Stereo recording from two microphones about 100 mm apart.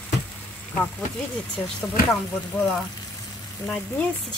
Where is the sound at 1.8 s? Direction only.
15° left (ahead or behind).